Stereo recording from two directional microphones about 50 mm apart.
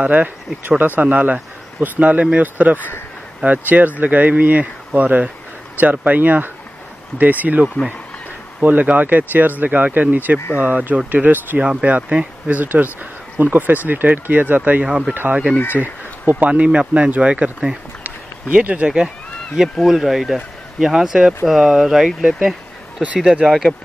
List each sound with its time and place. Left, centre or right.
0.0 s speech: right
8.6 s speech: right
15.8 s speech: right; by 17.7 s centre
18.0 s a sound: right
19.6 s speech: centre
22.4 s a sound: centre
23.4 s speech: centre